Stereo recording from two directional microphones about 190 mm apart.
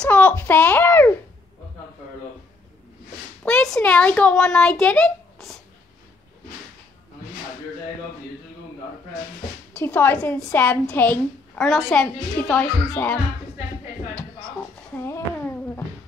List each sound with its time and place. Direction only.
0.0 s a child's voice: 5° left (ahead or behind)
3.4 s a child's voice: 5° left (ahead or behind)
9.8 s a woman's voice: 10° left (ahead or behind)
12.8 s a woman's voice: 15° left (ahead or behind)
14.1 s a sound: 10° left (ahead or behind)